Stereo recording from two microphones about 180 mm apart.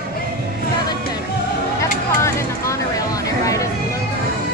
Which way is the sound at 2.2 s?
15° left (ahead or behind).